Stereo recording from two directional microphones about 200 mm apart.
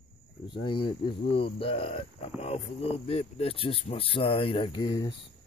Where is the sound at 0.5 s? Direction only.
25° left (ahead or behind).